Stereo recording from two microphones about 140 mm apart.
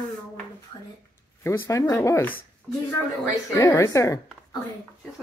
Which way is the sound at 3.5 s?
20° left (ahead or behind).